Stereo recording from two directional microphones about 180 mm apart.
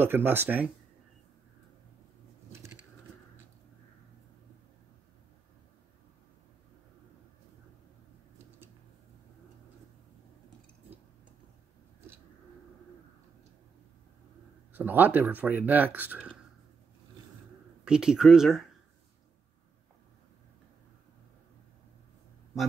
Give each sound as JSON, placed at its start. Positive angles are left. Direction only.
{"t": 0.0, "sound": "speech", "side_deg": -10}
{"t": 14.7, "sound": "speech", "side_deg": -10}
{"t": 17.8, "sound": "speech", "side_deg": -5}